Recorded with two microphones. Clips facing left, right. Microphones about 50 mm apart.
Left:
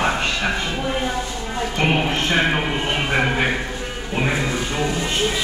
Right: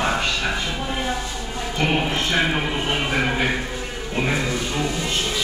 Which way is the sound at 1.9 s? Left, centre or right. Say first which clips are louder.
Left 1 dB; centre.